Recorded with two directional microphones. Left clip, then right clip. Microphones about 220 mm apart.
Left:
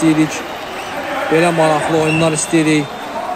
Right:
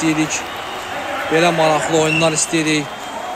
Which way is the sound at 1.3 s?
Centre (ahead or behind).